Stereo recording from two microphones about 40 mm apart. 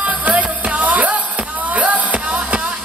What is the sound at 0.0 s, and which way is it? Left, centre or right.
Music, right.